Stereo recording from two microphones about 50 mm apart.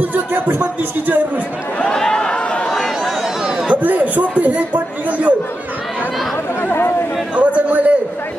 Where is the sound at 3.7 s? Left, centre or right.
Right.